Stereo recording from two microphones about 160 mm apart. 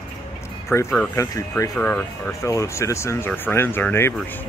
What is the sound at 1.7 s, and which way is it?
Speech, 10° left (ahead or behind).